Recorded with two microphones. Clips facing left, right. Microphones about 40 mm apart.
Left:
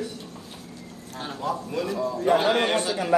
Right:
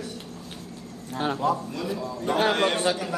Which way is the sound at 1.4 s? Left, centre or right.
Centre.